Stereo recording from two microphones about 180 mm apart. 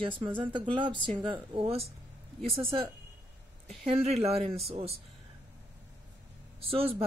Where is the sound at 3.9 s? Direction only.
35° right (ahead or behind).